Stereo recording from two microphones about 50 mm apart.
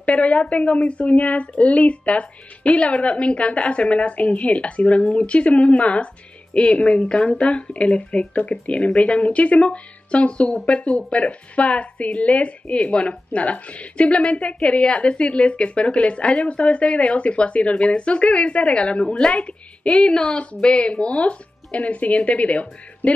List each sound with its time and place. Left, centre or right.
0.0 s speech: left